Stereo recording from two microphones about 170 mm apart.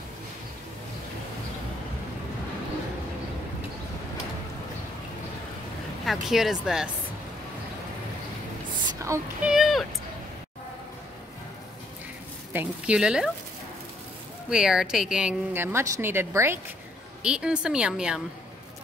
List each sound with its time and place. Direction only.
6.0 s a woman's voice: centre (ahead or behind)
9.0 s child singing: 15° right (ahead or behind)
9.5 s a sound: centre (ahead or behind)
12.5 s a woman's voice: 5° right (ahead or behind)
14.5 s a woman's voice: 5° right (ahead or behind)